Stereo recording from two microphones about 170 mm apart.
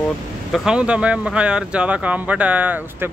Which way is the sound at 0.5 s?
5° right (ahead or behind).